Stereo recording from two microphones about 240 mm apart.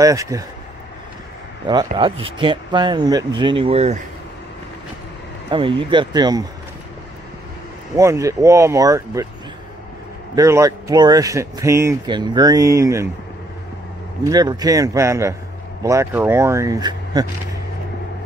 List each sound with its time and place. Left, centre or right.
0.0 s speech: centre
1.7 s speech: centre
5.5 s speech: right
7.9 s speech: centre
10.3 s speech: centre
14.2 s speech: centre